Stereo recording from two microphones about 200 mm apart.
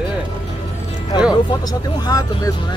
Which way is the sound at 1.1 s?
25° left (ahead or behind).